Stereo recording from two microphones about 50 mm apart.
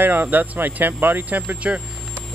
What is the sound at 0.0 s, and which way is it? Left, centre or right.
Speech, right.